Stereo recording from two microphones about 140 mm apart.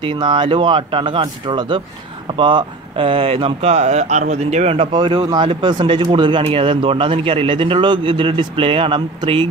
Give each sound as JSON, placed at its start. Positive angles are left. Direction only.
{"t": 0.0, "sound": "a man's voice", "side_deg": -35}
{"t": 4.9, "sound": "a man's voice", "side_deg": -35}